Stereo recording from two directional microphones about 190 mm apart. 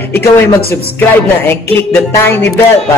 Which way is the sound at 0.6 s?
55° left (ahead or behind).